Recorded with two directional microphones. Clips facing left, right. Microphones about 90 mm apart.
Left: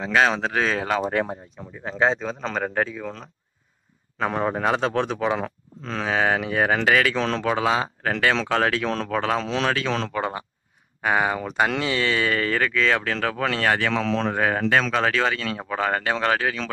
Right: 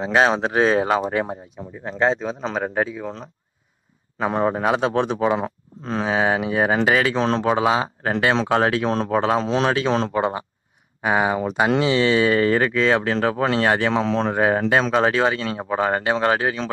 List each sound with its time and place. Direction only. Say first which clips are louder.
0.0 s speech: right 2 dB; 25° right (ahead or behind)
1.9 s a man's voice: right 2 dB; centre (ahead or behind)
4.3 s speech: right 5 dB; 30° right (ahead or behind)
4.6 s speech: right 2 dB; 15° right (ahead or behind)